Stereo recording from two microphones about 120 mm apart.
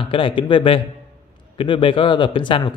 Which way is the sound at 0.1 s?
45° left (ahead or behind).